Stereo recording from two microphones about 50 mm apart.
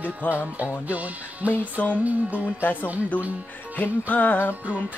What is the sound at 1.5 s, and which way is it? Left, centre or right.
Speech, left.